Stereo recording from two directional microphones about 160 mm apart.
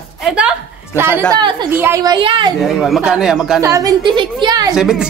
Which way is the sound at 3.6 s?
20° right (ahead or behind).